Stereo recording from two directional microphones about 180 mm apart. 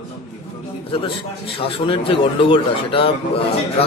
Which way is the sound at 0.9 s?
30° left (ahead or behind).